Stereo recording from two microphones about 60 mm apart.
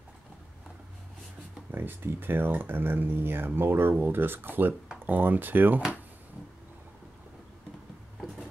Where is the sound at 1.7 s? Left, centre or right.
Right.